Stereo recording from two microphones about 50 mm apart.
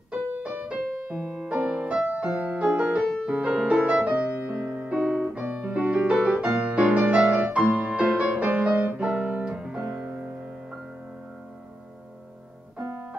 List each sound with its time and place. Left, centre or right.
0.4 s music: right
1.1 s music: centre
1.5 s music: right
4.9 s piano: centre
5.2 s piano: right
6.2 s music: right